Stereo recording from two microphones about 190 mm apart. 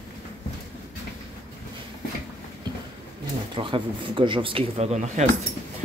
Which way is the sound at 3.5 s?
25° right (ahead or behind).